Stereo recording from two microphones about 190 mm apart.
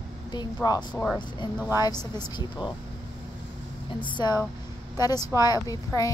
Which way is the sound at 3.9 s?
25° left (ahead or behind).